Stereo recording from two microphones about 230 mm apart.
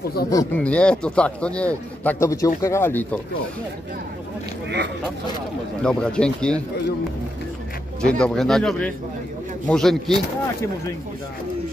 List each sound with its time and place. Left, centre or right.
0.3 s speech: centre
4.6 s speech: right
5.8 s speech: centre
8.0 s speech: centre